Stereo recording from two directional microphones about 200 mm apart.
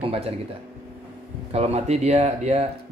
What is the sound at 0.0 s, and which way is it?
Speech, 30° right (ahead or behind).